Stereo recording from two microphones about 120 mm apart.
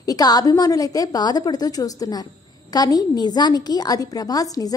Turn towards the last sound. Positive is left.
turn(degrees=30)  # may be behind; listen again after turning